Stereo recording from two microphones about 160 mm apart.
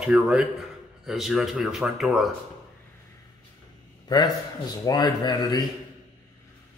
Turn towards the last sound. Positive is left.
turn(degrees=25)  # may be behind; listen again after turning